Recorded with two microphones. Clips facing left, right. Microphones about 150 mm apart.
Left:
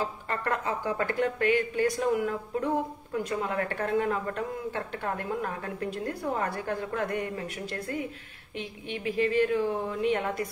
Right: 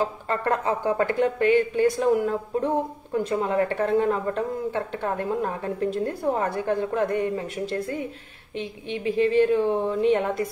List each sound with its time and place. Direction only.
0.3 s speech: 30° right (ahead or behind)